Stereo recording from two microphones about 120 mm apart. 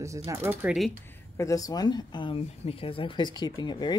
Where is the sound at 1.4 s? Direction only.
30° left (ahead or behind).